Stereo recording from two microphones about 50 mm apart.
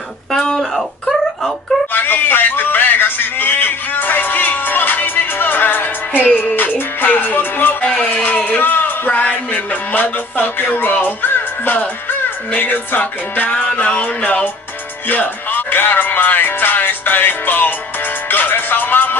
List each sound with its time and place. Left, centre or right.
0.3 s a sound: centre
1.9 s music: left
6.2 s music: left
6.5 s music: left
7.8 s music: left
8.2 s music: left
15.0 s speech: left
18.3 s music: left